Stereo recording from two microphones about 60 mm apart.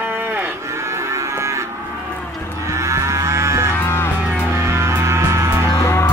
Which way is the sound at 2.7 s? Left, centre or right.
Right.